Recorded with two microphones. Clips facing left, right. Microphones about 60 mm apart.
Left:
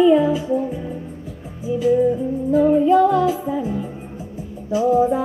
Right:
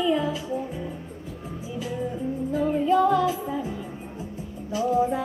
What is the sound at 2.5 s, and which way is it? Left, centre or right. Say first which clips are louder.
Music: left 8 dB; centre.